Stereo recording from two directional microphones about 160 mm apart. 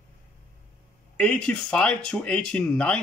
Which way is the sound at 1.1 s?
5° left (ahead or behind).